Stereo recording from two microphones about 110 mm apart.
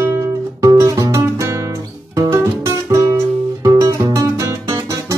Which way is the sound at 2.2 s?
25° right (ahead or behind).